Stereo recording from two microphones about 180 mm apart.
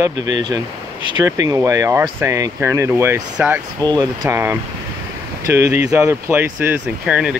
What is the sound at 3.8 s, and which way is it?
Speech, 25° right (ahead or behind).